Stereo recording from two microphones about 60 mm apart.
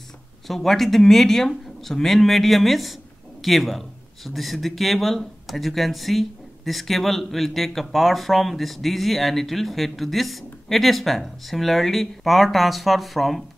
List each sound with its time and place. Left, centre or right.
0.5 s a man's voice: centre